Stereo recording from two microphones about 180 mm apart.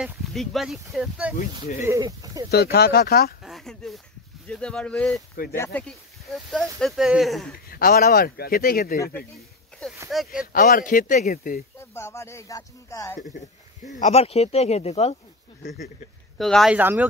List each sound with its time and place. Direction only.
0.0 s speech: centre (ahead or behind)
1.8 s speech: 15° right (ahead or behind)
2.5 s speech: 60° left (ahead or behind)
3.4 s speech: centre (ahead or behind)
7.7 s speech: 55° left (ahead or behind)
10.0 s speech: centre (ahead or behind)
10.5 s speech: 50° left (ahead or behind)
11.8 s speech: 15° left (ahead or behind)
13.9 s speech: 35° left (ahead or behind)
16.3 s speech: centre (ahead or behind)
16.7 s speech: 10° right (ahead or behind)